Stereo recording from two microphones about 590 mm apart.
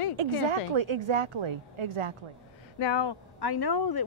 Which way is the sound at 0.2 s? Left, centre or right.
Right.